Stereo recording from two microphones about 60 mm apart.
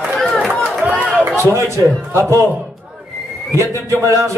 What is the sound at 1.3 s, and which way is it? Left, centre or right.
A man's voice, right.